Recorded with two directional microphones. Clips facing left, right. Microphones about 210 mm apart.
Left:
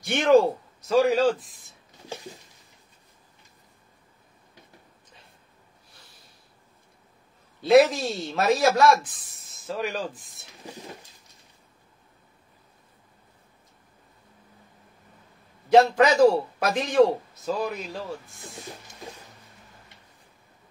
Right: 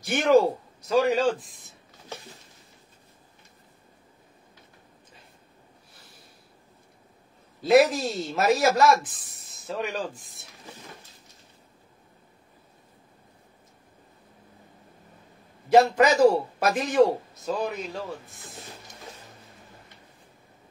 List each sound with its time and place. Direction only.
0.0 s speech: centre (ahead or behind)
7.6 s speech: centre (ahead or behind)
15.7 s speech: 5° right (ahead or behind)